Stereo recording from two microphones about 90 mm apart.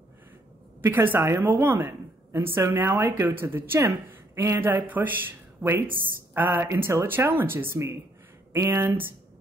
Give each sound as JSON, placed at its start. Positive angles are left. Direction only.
{"t": 0.9, "sound": "a woman's voice", "side_deg": -25}